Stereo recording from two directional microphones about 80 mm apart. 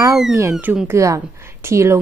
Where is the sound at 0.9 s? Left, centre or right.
Right.